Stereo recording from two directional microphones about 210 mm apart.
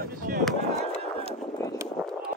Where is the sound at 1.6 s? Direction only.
15° left (ahead or behind).